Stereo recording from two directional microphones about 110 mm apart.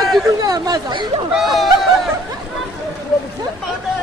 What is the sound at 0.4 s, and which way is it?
Speech, 35° right (ahead or behind).